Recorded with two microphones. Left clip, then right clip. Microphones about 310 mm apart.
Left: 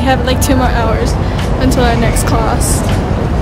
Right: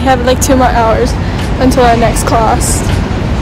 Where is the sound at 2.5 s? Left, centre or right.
Centre.